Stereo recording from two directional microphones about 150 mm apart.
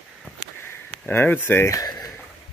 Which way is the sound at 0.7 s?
15° left (ahead or behind).